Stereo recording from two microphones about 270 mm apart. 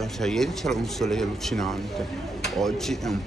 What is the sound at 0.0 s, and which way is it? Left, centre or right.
Speech, centre.